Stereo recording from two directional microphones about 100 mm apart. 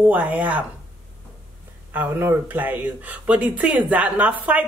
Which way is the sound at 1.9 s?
20° right (ahead or behind).